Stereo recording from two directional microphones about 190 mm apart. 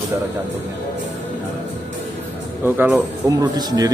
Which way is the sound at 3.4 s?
20° right (ahead or behind).